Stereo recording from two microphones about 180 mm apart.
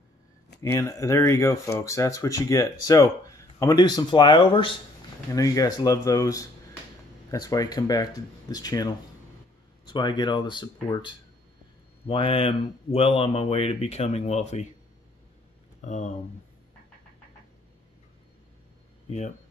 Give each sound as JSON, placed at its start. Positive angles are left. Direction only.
{"t": 0.6, "sound": "speech", "side_deg": 15}
{"t": 15.8, "sound": "speech", "side_deg": 40}
{"t": 19.0, "sound": "speech", "side_deg": 40}